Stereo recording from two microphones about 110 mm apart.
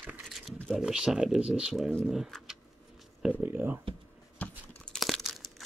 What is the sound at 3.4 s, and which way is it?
Speech, 15° right (ahead or behind).